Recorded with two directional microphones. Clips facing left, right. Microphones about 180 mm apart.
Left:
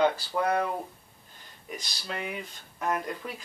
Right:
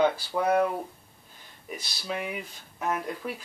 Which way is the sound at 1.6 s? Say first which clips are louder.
Right 3 dB; 5° right (ahead or behind).